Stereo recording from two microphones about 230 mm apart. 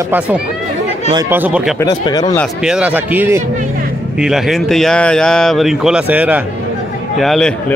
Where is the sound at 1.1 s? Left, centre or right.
Centre.